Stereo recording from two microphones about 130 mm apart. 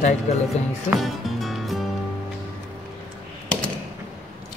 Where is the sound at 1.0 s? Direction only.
Centre (ahead or behind).